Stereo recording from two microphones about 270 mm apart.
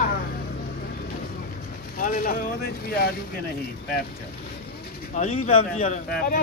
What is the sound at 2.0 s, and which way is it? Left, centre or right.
Speech, left.